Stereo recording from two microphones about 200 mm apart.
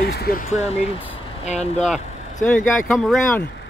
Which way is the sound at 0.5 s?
35° left (ahead or behind).